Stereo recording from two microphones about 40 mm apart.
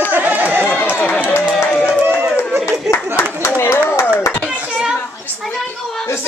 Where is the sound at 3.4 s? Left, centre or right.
Left.